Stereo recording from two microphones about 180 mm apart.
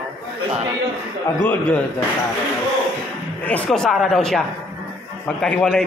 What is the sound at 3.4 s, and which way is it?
A man's voice, 5° left (ahead or behind).